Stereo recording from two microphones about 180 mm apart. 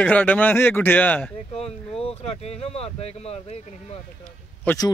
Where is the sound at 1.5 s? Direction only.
30° left (ahead or behind).